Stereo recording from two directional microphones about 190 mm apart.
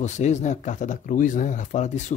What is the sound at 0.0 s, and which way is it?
Speech, 40° left (ahead or behind).